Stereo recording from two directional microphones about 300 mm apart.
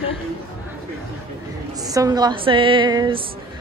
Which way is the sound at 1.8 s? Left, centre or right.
Centre.